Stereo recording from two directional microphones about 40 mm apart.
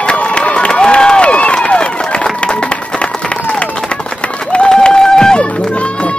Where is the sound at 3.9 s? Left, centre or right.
Left.